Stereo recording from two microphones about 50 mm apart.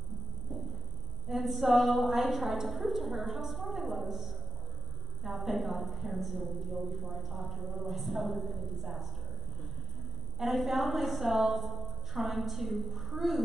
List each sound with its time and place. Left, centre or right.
1.2 s a woman's voice: centre
10.4 s a woman's voice: centre